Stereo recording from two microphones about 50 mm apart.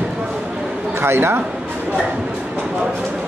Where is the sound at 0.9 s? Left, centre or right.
Right.